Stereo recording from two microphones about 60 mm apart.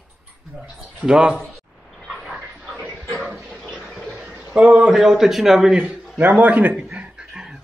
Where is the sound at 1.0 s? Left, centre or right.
Centre.